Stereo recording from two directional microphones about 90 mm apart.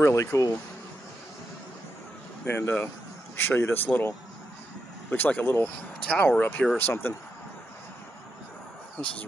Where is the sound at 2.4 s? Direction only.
25° left (ahead or behind).